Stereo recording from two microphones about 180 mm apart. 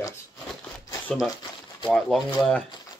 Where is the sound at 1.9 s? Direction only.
5° left (ahead or behind).